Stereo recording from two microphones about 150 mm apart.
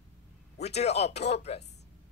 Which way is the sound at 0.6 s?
45° left (ahead or behind).